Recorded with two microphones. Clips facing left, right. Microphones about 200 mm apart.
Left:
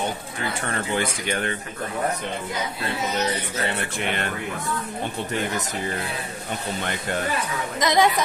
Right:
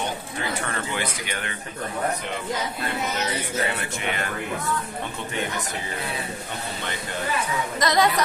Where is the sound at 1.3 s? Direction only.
40° left (ahead or behind).